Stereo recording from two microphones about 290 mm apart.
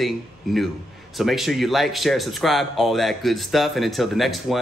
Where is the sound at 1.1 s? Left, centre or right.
Centre.